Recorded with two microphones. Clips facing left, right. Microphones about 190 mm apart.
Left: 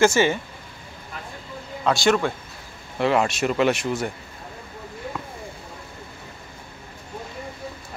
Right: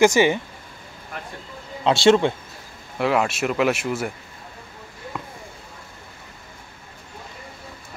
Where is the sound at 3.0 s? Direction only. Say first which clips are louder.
Even; 5° right (ahead or behind).